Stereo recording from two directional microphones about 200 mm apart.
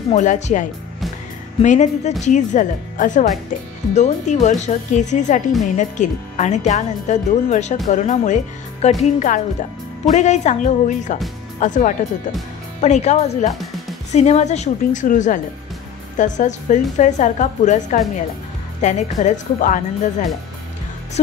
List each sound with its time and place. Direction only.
0.1 s speech: 35° left (ahead or behind)